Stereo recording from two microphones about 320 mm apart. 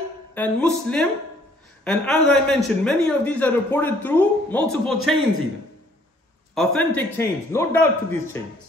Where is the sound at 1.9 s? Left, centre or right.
Centre.